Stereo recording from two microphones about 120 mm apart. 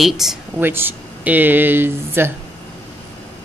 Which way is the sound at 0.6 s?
15° right (ahead or behind).